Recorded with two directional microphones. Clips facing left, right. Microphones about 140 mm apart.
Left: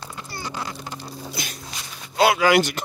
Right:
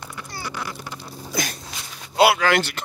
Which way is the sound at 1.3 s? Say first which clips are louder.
Right 11 dB; 50° right (ahead or behind).